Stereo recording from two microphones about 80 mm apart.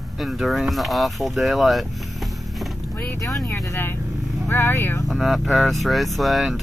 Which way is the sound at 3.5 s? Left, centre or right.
Left.